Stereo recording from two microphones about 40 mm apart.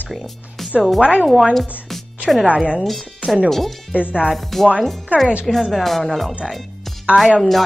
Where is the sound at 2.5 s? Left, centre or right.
Right.